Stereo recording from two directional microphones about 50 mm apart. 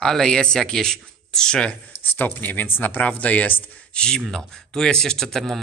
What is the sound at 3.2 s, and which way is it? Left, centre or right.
Speech, left.